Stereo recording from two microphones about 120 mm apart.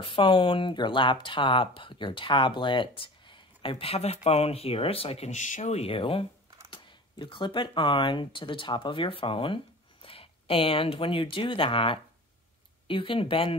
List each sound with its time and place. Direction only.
0.0 s speech: 45° left (ahead or behind)